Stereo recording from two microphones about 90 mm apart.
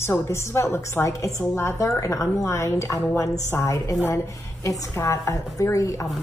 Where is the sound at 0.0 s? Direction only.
30° left (ahead or behind).